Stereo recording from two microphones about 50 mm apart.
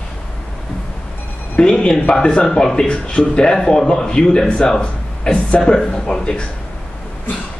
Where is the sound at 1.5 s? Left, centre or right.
Centre.